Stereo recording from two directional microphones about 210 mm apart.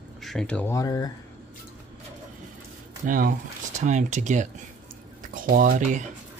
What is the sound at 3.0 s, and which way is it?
Speech, 40° right (ahead or behind).